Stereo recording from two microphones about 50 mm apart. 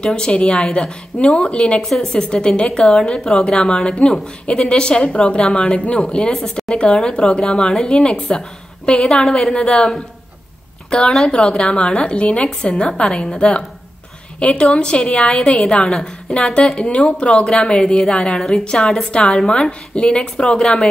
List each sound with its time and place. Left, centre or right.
0.0 s a woman's voice: centre